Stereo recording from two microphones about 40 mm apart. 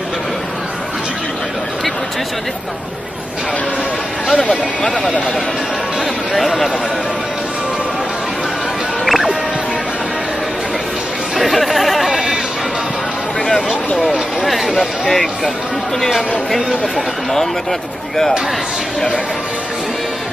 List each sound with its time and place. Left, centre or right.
4.4 s speech: centre
6.3 s speech: centre
9.0 s music: centre
11.3 s chatter: centre
12.1 s bleat: centre
14.4 s chatter: centre
14.8 s speech: centre